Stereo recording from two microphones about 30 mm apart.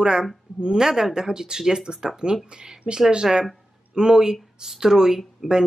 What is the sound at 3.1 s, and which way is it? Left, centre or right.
Speech, right.